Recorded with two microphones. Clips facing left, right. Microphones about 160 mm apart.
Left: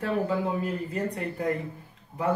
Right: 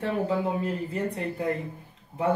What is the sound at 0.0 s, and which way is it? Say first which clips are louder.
Speech: even; 30° right (ahead or behind).